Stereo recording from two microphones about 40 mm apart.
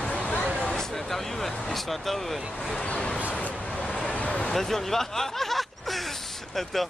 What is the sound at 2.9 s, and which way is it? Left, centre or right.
Speech, left.